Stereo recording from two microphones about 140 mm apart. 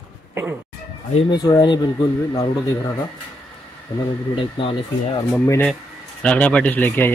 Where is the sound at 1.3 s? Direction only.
30° left (ahead or behind).